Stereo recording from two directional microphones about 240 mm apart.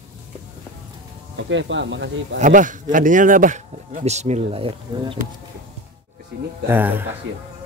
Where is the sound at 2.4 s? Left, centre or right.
Right.